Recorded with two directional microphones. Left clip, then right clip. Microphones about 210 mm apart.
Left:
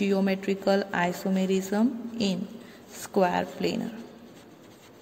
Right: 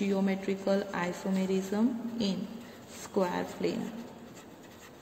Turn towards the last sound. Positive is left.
turn(degrees=35)  # may be behind; listen again after turning